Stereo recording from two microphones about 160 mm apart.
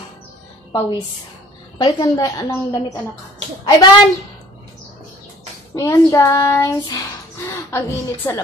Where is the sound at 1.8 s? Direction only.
25° left (ahead or behind).